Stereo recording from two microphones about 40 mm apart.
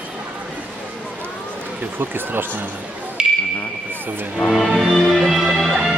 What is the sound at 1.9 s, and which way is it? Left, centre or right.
Speech, right.